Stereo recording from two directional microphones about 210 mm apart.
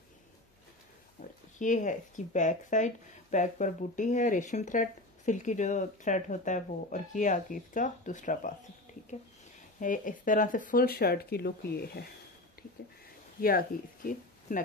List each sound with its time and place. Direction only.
1.6 s speech: 35° left (ahead or behind)
9.8 s speech: 40° left (ahead or behind)
13.4 s speech: 45° left (ahead or behind)